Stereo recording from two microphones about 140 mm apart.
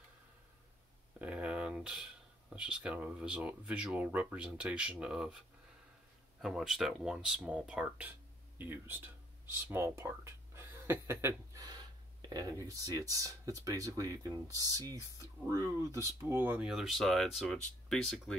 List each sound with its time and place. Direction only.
1.2 s a sound: 10° right (ahead or behind)
2.5 s speech: 10° right (ahead or behind)
6.4 s speech: 5° right (ahead or behind)